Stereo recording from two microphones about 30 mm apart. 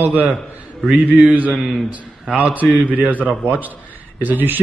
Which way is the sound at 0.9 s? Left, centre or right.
Right.